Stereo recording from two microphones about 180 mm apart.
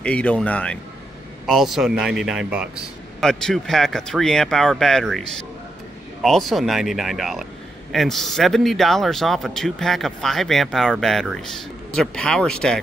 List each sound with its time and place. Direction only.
0.0 s a man's voice: 5° left (ahead or behind)
6.2 s a man's voice: centre (ahead or behind)